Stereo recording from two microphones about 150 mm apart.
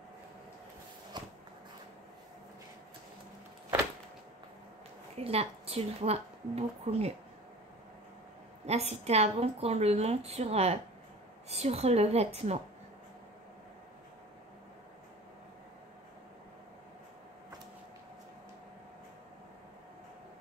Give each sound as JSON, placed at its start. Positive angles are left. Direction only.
{"t": 1.1, "sound": "biting", "side_deg": -30}
{"t": 5.2, "sound": "a woman's voice", "side_deg": -40}
{"t": 8.6, "sound": "a woman's voice", "side_deg": -45}